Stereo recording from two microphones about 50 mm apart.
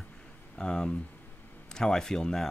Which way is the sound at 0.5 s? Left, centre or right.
Centre.